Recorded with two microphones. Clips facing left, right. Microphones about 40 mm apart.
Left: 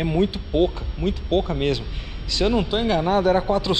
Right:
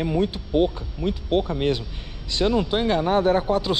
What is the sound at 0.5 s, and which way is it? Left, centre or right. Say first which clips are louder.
Speech: even; left.